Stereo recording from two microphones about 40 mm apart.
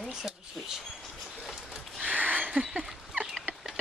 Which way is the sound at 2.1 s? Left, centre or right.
Right.